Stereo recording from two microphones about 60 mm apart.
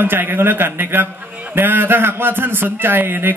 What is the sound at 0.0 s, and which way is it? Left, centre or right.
Speech, right.